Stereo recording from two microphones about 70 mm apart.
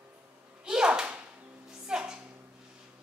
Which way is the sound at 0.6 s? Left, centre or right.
Centre.